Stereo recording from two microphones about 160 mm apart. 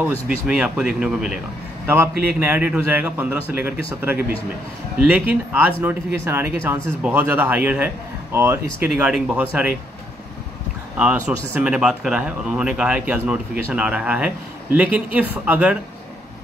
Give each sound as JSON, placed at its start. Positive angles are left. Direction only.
{"t": 0.0, "sound": "speech", "side_deg": -5}
{"t": 2.4, "sound": "speech", "side_deg": -10}
{"t": 11.0, "sound": "speech", "side_deg": -5}